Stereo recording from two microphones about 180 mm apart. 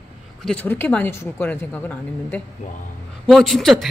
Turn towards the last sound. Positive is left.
turn(degrees=0)  # may be behind; listen again after turning